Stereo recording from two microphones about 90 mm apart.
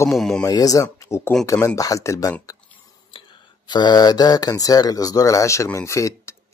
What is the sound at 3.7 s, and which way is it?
Speech, 55° left (ahead or behind).